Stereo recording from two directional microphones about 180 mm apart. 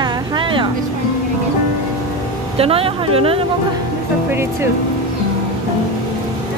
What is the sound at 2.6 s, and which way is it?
Speech, 30° right (ahead or behind).